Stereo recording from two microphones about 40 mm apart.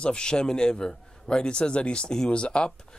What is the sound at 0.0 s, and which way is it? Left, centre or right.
Speech, left.